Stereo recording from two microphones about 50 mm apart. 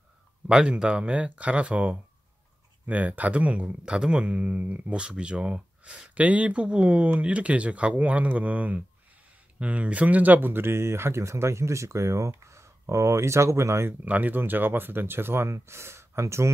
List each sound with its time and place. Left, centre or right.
0.5 s speech: centre; by 13.8 s right
14.0 s speech: right